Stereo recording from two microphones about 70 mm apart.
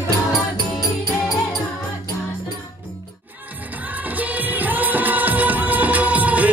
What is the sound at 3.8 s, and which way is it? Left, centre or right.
Music, right.